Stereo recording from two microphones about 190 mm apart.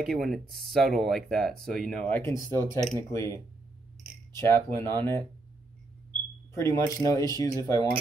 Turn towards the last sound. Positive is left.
turn(degrees=15)  # may be behind; listen again after turning